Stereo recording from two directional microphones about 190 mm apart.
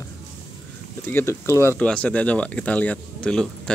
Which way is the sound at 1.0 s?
10° left (ahead or behind).